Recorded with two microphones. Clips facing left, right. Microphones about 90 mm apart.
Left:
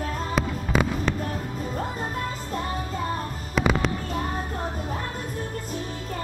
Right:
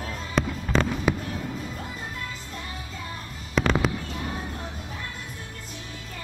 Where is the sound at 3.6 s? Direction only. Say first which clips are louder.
Left 1 dB; 5° left (ahead or behind).